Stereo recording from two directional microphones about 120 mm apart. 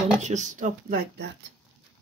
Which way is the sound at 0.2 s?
85° right.